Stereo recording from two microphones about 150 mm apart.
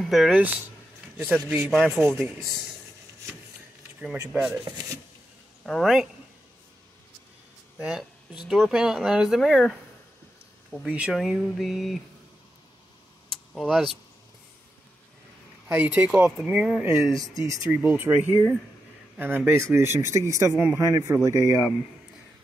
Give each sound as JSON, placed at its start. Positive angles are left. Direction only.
{"t": 0.0, "sound": "speech", "side_deg": 0}
{"t": 1.5, "sound": "speech", "side_deg": 0}
{"t": 4.3, "sound": "speech", "side_deg": -5}
{"t": 5.7, "sound": "speech", "side_deg": 0}
{"t": 7.8, "sound": "a sound", "side_deg": 0}
{"t": 8.5, "sound": "speech", "side_deg": 0}
{"t": 13.3, "sound": "vehicle", "side_deg": 0}
{"t": 15.7, "sound": "speech", "side_deg": -10}
{"t": 17.2, "sound": "speech", "side_deg": -20}
{"t": 17.6, "sound": "a man's voice", "side_deg": -10}